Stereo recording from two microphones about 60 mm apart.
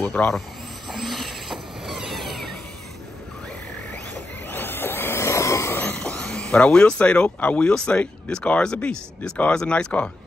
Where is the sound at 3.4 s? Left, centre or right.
Left.